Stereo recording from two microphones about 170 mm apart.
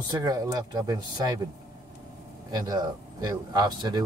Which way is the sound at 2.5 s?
25° right (ahead or behind).